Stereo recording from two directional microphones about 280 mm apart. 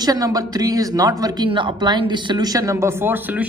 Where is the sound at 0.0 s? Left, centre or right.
Centre.